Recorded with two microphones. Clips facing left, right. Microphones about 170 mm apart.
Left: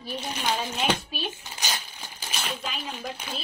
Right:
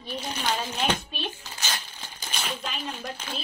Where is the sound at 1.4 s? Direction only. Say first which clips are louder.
Left 1 dB; 15° left (ahead or behind).